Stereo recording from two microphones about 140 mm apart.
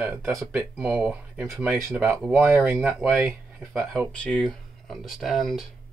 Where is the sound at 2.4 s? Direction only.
15° right (ahead or behind).